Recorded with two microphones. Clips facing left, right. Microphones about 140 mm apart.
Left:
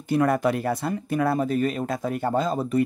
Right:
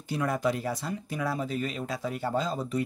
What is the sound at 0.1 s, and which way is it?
Speech, 60° left (ahead or behind).